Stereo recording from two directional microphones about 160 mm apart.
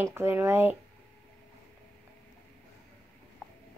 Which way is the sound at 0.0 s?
15° right (ahead or behind).